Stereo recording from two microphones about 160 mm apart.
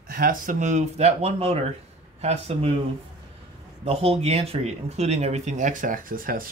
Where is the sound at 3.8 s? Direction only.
40° right (ahead or behind).